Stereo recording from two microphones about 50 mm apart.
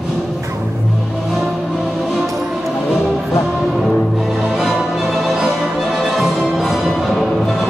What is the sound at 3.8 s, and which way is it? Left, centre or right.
Music, centre.